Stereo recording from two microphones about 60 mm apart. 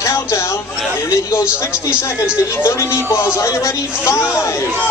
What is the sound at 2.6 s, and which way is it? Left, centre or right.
A man's voice, left.